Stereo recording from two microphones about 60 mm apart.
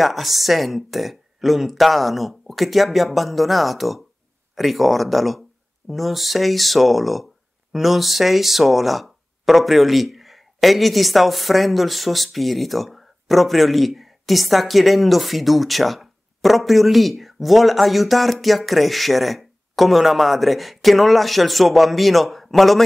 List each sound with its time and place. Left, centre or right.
0.0 s speech: centre